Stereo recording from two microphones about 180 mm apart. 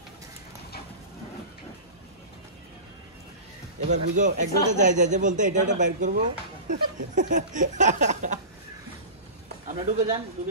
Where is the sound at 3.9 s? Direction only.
40° right (ahead or behind).